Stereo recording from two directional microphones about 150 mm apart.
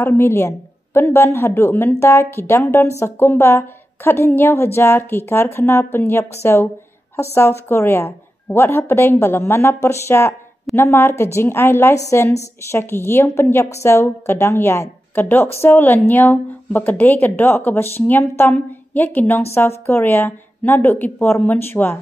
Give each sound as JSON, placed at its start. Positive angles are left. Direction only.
{"t": 0.0, "sound": "a woman's voice", "side_deg": 15}